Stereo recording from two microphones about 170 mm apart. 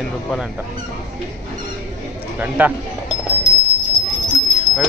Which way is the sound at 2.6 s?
10° right (ahead or behind).